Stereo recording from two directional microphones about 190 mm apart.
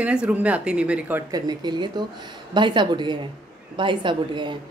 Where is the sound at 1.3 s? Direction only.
20° right (ahead or behind).